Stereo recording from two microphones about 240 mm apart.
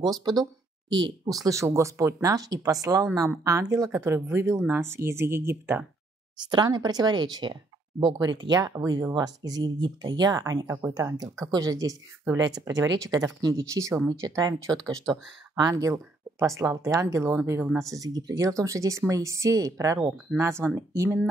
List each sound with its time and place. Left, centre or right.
0.2 s speech: centre